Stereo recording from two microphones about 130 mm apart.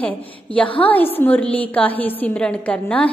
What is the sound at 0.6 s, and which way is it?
Speech, 45° left (ahead or behind).